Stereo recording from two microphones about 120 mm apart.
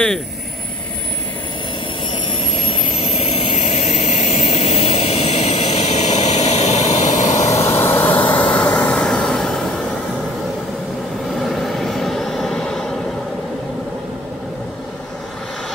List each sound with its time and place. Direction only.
2.5 s vehicle: 55° left (ahead or behind)
3.5 s vehicle: 85° left
7.6 s vehicle: 20° left (ahead or behind); by 9.8 s 5° left (ahead or behind)
11.3 s vehicle: centre (ahead or behind)